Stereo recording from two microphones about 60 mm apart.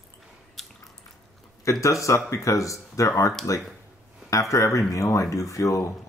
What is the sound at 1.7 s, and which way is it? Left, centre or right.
Speech, left.